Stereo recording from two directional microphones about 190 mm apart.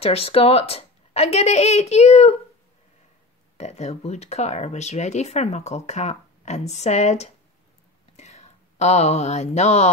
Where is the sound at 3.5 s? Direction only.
35° left (ahead or behind).